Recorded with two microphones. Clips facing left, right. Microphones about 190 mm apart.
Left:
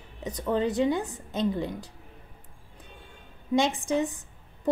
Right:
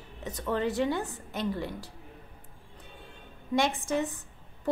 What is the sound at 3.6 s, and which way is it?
Speech, 15° left (ahead or behind).